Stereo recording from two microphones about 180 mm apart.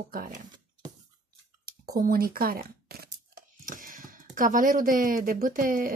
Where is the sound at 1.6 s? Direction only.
55° right (ahead or behind).